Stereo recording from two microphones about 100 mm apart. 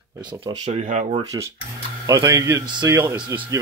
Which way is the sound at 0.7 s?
90° right.